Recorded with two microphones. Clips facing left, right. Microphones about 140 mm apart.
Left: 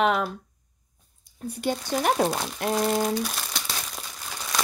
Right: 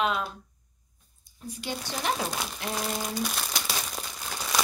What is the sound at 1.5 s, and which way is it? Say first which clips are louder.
Speech: left 8 dB; 55° left (ahead or behind).